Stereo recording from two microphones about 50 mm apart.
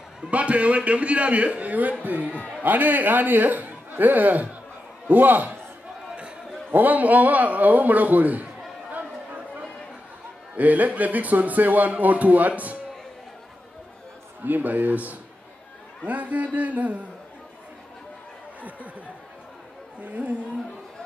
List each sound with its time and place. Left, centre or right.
0.2 s a man's voice: right
6.7 s speech: right
10.5 s speech: right
14.4 s speech: right
20.1 s speech: right